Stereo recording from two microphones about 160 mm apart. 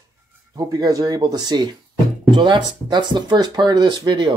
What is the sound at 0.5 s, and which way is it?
Speech, 25° right (ahead or behind).